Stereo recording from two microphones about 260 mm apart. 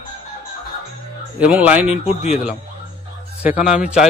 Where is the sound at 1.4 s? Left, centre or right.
Centre.